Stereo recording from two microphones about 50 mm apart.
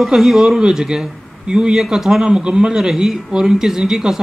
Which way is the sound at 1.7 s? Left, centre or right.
Centre.